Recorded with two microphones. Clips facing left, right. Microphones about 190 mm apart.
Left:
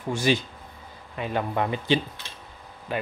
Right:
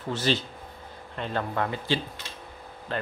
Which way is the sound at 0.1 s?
15° left (ahead or behind).